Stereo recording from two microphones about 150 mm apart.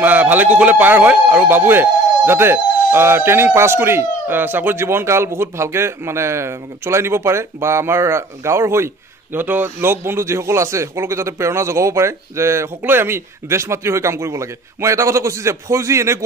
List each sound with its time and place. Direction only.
0.0 s speech: 10° right (ahead or behind)